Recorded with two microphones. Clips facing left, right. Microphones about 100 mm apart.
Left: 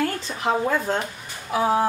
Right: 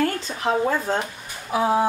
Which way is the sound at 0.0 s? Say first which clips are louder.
Right 2 dB; 5° left (ahead or behind).